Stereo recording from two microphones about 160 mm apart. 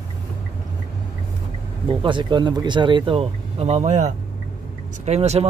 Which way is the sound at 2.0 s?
30° right (ahead or behind).